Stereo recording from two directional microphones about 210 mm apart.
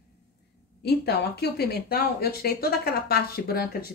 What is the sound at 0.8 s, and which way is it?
Speech, 50° left (ahead or behind).